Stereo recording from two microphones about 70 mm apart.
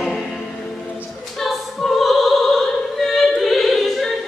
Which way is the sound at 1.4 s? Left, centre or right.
Centre.